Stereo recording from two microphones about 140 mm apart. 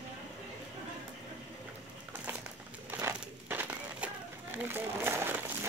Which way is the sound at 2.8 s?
15° right (ahead or behind).